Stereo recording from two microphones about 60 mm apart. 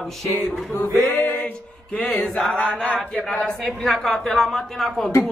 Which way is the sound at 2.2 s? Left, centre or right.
Centre.